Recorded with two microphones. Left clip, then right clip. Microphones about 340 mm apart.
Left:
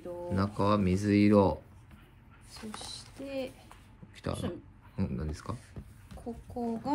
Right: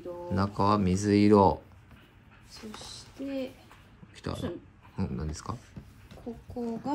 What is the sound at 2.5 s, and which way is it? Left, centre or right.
Speech, left.